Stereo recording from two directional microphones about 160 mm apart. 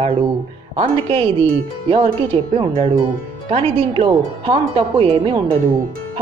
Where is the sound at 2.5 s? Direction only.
35° right (ahead or behind).